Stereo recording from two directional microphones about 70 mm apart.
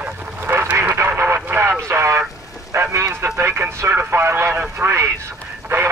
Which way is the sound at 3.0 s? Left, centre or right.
Right.